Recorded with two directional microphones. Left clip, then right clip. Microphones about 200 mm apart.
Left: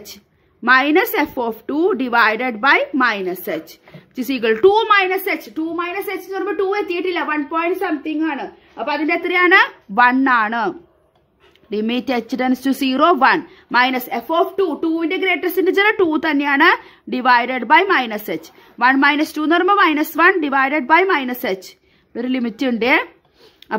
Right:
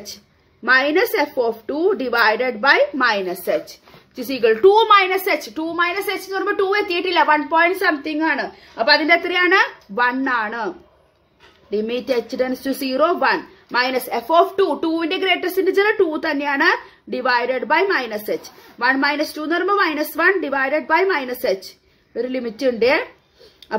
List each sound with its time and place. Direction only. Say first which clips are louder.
0.7 s a woman's voice: left 2 dB; 40° left (ahead or behind); by 7.7 s 20° left (ahead or behind)
8.7 s a woman's voice: right 5 dB; 20° left (ahead or behind); by 10.7 s 45° left (ahead or behind)
11.7 s a woman's voice: even; 45° left (ahead or behind)
14.3 s a woman's voice: right 2 dB; 20° left (ahead or behind); by 23.0 s 45° left (ahead or behind)